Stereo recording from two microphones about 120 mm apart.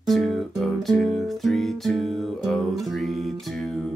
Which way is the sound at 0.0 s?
Centre (ahead or behind).